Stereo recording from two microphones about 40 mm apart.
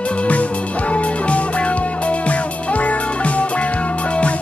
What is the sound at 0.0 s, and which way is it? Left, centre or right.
Music, left.